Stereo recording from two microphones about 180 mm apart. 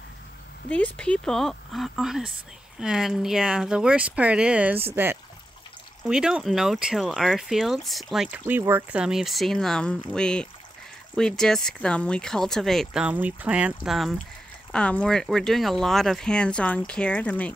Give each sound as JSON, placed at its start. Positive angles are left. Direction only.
{"t": 0.7, "sound": "speech", "side_deg": 10}